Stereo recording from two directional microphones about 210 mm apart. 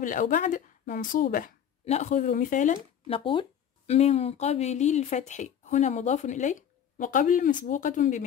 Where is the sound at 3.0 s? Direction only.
25° left (ahead or behind).